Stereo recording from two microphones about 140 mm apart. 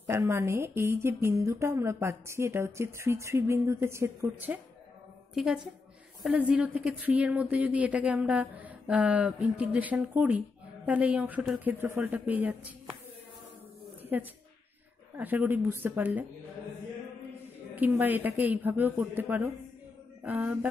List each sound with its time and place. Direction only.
0.1 s a woman's voice: 20° right (ahead or behind)
5.3 s a woman's voice: 5° right (ahead or behind)
14.1 s speech: 10° right (ahead or behind)
17.7 s speech: 15° right (ahead or behind)